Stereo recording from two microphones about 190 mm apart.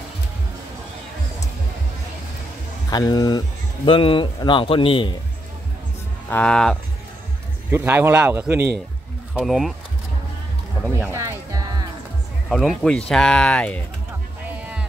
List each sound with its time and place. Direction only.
2.9 s speech: 20° left (ahead or behind)
6.2 s speech: 5° left (ahead or behind)
7.7 s speech: 10° right (ahead or behind)
11.1 s music: 15° right (ahead or behind)
12.4 s speech: centre (ahead or behind)